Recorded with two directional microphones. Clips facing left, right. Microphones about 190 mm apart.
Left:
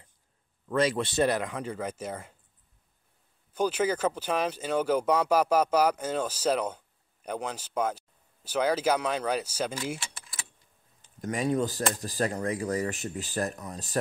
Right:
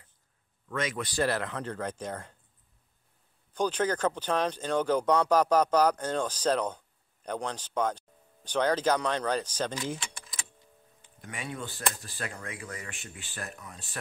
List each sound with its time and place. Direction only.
0.7 s speech: 35° left (ahead or behind); by 2.3 s 10° left (ahead or behind)
3.5 s speech: 10° left (ahead or behind)
11.1 s speech: 40° left (ahead or behind)